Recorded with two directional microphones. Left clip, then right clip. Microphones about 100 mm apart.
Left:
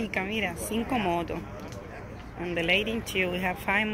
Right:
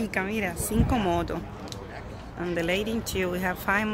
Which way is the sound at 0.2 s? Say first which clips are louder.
Right 1 dB; 20° right (ahead or behind).